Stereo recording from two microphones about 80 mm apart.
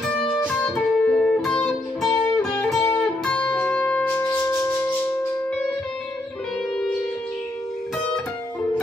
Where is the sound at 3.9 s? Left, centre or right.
Centre.